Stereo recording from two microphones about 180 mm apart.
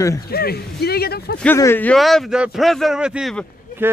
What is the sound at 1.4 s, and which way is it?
A man's voice, 10° left (ahead or behind).